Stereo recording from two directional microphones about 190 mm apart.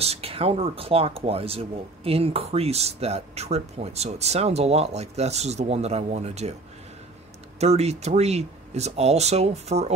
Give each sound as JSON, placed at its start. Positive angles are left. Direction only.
{"t": 0.0, "sound": "speech", "side_deg": -30}
{"t": 7.6, "sound": "speech", "side_deg": -35}